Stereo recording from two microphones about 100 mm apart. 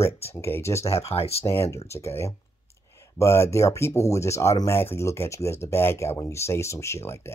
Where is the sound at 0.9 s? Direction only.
85° left.